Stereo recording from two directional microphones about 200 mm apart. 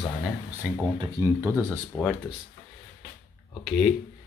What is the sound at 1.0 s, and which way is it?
Speech, 15° right (ahead or behind).